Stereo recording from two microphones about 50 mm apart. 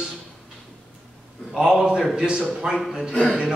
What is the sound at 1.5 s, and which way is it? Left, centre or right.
A man's voice, centre.